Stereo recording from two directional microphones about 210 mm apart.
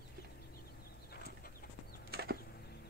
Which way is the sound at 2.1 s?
50° right (ahead or behind).